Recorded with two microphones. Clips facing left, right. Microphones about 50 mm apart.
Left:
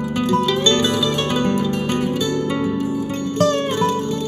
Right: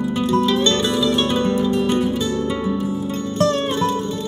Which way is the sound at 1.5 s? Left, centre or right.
Left.